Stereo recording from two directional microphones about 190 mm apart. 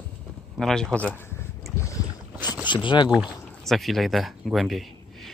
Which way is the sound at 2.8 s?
25° left (ahead or behind).